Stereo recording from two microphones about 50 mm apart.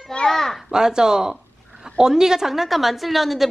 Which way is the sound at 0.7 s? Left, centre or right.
Centre.